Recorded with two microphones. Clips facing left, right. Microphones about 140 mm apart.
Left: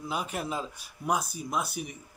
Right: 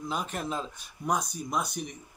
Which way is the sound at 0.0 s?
10° left (ahead or behind).